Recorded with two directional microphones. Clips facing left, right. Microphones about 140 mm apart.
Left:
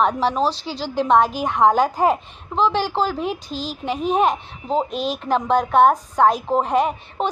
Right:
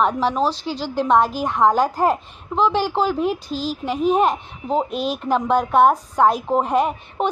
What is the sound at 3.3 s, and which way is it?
Speech, 45° right (ahead or behind).